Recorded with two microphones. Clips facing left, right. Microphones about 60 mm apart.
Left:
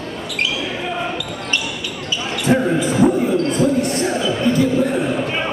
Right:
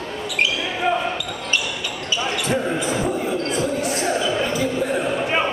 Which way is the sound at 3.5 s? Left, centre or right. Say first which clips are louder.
Left 5 dB; centre.